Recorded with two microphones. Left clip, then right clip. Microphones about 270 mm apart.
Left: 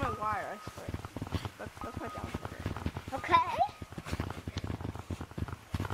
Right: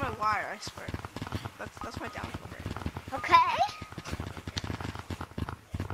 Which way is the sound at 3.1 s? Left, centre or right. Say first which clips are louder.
Right 5 dB; right.